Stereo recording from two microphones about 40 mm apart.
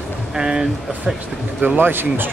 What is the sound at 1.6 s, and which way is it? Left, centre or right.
Speech, right.